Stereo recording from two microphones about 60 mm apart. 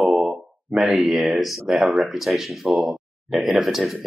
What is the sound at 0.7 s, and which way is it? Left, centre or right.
Speech, centre.